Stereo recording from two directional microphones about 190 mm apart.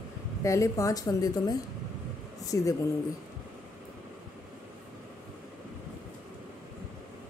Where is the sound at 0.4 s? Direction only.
15° left (ahead or behind).